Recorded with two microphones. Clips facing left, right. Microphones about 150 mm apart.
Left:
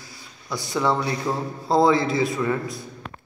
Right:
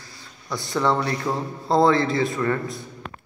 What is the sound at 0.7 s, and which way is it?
A man's voice, 10° left (ahead or behind).